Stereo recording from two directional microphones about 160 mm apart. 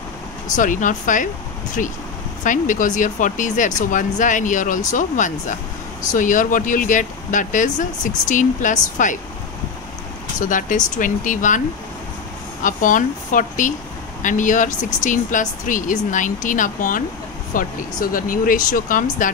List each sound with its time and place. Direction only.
0.6 s speech: 55° left (ahead or behind)
10.4 s speech: 55° left (ahead or behind)
12.6 s speech: 55° left (ahead or behind)